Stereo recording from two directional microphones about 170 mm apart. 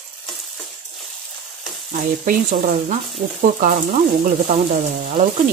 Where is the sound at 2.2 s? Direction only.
55° right (ahead or behind).